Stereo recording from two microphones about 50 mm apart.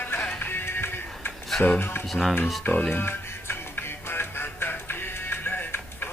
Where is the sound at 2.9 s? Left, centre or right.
Left.